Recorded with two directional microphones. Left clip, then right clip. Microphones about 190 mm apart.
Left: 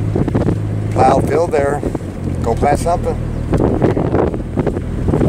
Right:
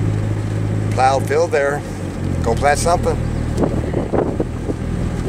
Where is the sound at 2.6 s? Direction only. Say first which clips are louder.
Even; 5° left (ahead or behind).